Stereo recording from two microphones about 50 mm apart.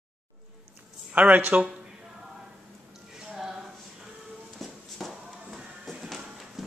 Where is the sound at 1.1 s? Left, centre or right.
Right.